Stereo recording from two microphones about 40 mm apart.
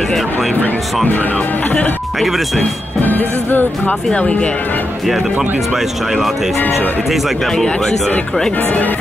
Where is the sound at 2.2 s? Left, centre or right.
Centre.